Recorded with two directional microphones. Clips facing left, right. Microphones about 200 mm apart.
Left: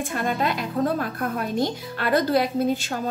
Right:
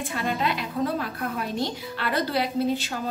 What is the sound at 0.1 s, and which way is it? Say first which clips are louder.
A woman's voice: left 1 dB; 50° left (ahead or behind).